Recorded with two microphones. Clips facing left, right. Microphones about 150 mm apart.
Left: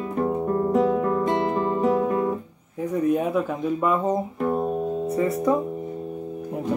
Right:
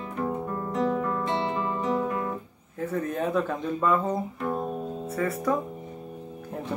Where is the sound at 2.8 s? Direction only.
15° left (ahead or behind).